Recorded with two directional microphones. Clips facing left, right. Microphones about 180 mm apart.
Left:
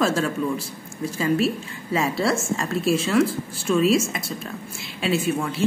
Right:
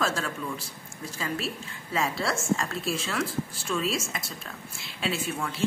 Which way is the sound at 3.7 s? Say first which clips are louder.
Left 10 dB; 15° left (ahead or behind).